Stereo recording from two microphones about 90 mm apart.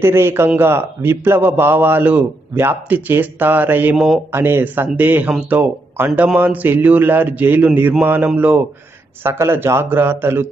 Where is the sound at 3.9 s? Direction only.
5° right (ahead or behind).